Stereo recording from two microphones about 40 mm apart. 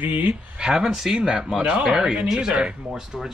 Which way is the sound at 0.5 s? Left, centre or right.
Centre.